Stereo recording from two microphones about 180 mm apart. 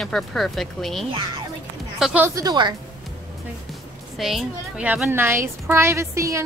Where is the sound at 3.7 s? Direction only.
Centre (ahead or behind).